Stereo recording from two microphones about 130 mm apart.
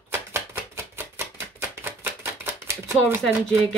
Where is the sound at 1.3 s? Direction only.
15° right (ahead or behind).